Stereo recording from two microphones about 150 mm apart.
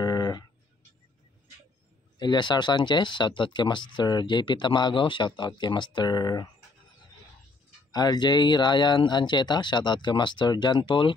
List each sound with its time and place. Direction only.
0.0 s a sound: 25° left (ahead or behind)
2.1 s speech: 30° left (ahead or behind)
7.9 s speech: 25° left (ahead or behind)